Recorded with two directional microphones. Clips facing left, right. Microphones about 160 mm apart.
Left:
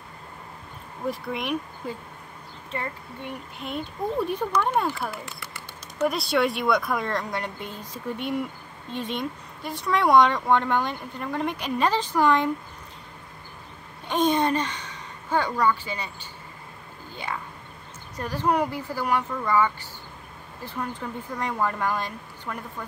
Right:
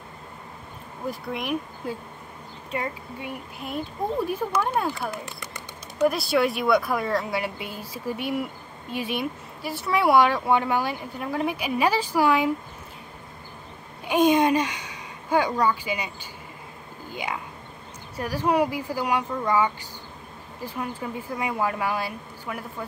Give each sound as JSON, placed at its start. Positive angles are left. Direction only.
{"t": 1.0, "sound": "speech", "side_deg": 0}
{"t": 4.9, "sound": "a sound", "side_deg": -20}
{"t": 6.0, "sound": "speech", "side_deg": 0}
{"t": 14.0, "sound": "speech", "side_deg": -10}
{"t": 17.1, "sound": "speech", "side_deg": -15}